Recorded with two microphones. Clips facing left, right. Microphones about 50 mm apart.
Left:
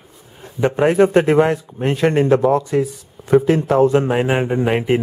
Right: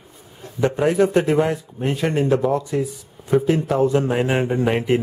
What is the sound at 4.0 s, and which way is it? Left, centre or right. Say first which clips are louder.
Speech: left 3 dB; left.